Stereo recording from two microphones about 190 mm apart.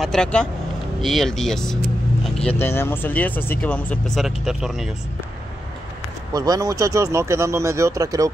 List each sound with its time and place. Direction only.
0.0 s speech: 5° left (ahead or behind)
6.3 s speech: 20° right (ahead or behind)